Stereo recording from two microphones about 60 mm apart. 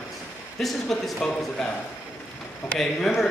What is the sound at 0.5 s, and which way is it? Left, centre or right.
A man's voice, centre.